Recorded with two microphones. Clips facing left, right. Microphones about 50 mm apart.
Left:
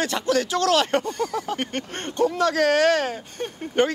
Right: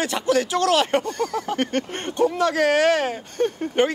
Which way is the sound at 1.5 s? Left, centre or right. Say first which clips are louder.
Right 5 dB; centre.